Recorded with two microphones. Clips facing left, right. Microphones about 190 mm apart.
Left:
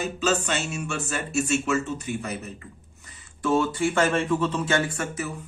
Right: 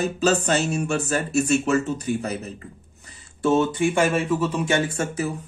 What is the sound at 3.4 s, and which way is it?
Speech, 20° right (ahead or behind).